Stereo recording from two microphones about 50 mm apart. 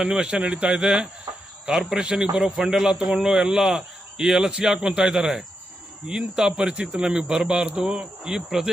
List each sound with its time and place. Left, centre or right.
0.1 s a man's voice: right